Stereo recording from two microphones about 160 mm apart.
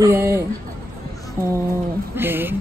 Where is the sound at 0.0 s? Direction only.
15° right (ahead or behind).